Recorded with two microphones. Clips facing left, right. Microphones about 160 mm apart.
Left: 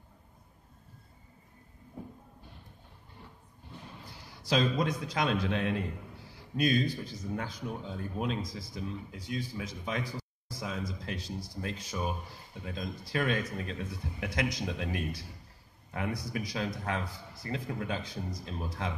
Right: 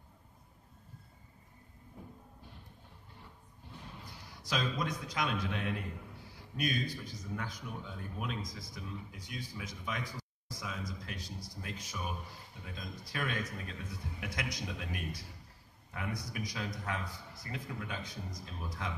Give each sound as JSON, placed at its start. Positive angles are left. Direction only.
{"t": 4.0, "sound": "a man's voice", "side_deg": 30}
{"t": 6.5, "sound": "speech", "side_deg": 30}